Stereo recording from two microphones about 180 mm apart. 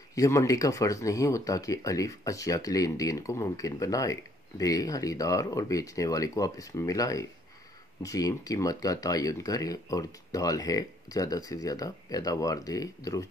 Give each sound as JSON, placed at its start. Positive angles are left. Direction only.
{"t": 0.1, "sound": "speech", "side_deg": 15}